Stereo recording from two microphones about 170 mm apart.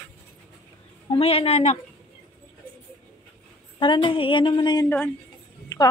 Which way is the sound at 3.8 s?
30° left (ahead or behind).